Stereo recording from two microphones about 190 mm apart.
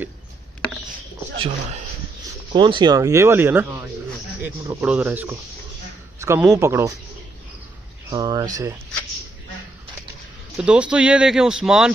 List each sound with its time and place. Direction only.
2.5 s speech: 25° right (ahead or behind)
8.1 s speech: 20° right (ahead or behind)
10.6 s speech: 5° right (ahead or behind)